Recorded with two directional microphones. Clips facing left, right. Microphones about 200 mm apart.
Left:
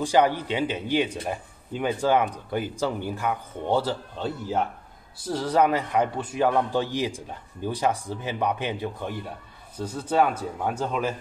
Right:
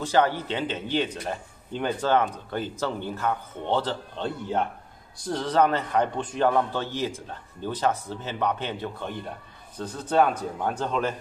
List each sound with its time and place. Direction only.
0.0 s speech: 15° left (ahead or behind)